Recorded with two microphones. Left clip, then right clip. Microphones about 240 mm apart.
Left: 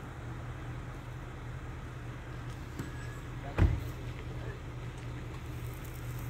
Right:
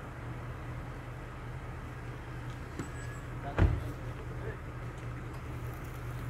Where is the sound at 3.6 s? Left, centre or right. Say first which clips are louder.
Right 2 dB; left.